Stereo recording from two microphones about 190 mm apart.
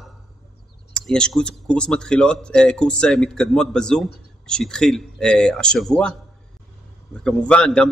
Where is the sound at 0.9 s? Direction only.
5° left (ahead or behind).